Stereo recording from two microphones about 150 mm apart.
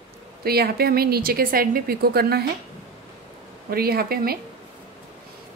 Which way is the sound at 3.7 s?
90° right.